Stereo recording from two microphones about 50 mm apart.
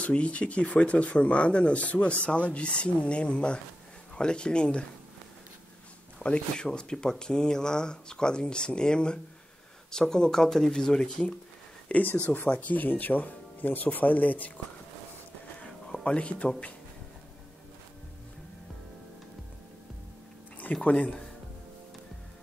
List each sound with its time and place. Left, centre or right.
0.0 s speech: left
6.1 s speech: left
11.9 s speech: left
15.6 s music: centre
20.8 s speech: left